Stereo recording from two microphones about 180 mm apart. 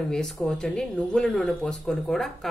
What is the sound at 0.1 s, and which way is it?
A woman's voice, centre (ahead or behind).